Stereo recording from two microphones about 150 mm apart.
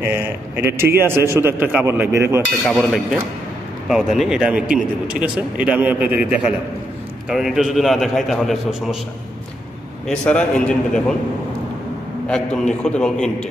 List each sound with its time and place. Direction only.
0.0 s a man's voice: 15° right (ahead or behind)
2.6 s a man's voice: centre (ahead or behind)
4.2 s a man's voice: 5° right (ahead or behind)
10.0 s a man's voice: 5° left (ahead or behind)
12.3 s a man's voice: 5° left (ahead or behind)